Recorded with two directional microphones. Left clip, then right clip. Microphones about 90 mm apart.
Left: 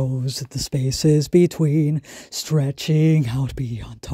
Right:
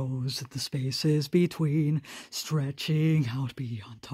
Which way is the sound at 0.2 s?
30° left (ahead or behind).